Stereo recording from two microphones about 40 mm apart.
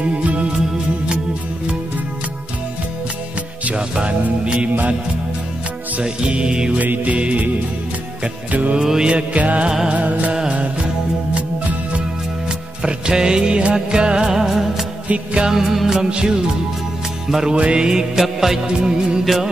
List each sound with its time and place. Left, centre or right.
0.0 s music: right
3.7 s music: right
6.0 s music: right
6.7 s music: right
8.7 s music: centre
9.1 s music: right
9.7 s music: centre
9.9 s music: right
12.4 s music: centre
14.3 s music: centre
16.0 s music: centre
17.5 s music: right; by 18.6 s centre
18.7 s music: right